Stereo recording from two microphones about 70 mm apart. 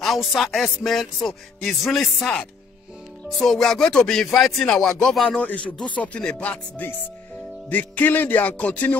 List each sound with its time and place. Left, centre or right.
0.0 s music: centre
7.7 s music: left